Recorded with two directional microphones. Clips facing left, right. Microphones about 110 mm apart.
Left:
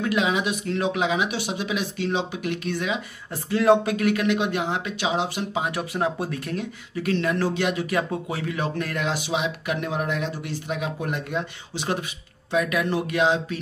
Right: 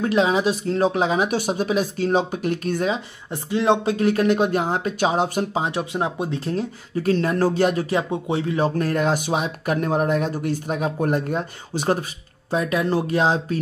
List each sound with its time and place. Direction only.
0.0 s speech: 35° right (ahead or behind)
3.3 s speech: 20° right (ahead or behind); by 5.6 s 45° right (ahead or behind)
5.6 s speech: 25° right (ahead or behind); by 7.9 s 40° right (ahead or behind)
7.9 s speech: 25° right (ahead or behind); by 12.0 s 40° right (ahead or behind)
12.4 s speech: 30° right (ahead or behind)